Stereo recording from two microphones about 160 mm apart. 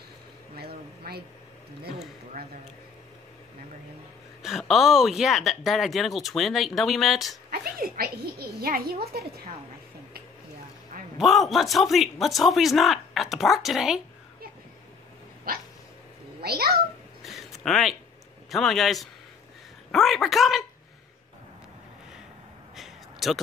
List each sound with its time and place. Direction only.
0.6 s a sound: 80° right
4.4 s speech: centre (ahead or behind)
7.5 s speech: 65° right (ahead or behind)
11.1 s speech: centre (ahead or behind)
15.5 s dog: 65° right (ahead or behind)
16.3 s a child's voice: 80° right
17.2 s a sound: centre (ahead or behind)
18.5 s speech: centre (ahead or behind)
22.8 s a sound: centre (ahead or behind)